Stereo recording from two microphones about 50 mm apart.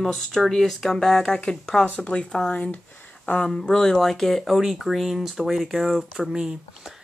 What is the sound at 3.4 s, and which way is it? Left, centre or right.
Speech, centre.